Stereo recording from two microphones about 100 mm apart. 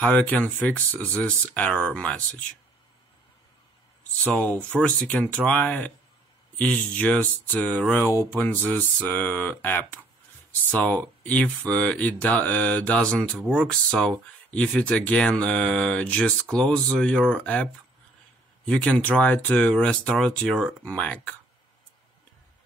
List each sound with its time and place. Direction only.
0.0 s speech: 15° left (ahead or behind)
4.2 s speech: 15° left (ahead or behind)
8.0 s a sound: 25° left (ahead or behind)
8.6 s speech: 15° left (ahead or behind)
18.7 s speech: 10° left (ahead or behind)